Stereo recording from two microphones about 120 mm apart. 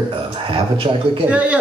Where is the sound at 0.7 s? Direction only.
45° right (ahead or behind).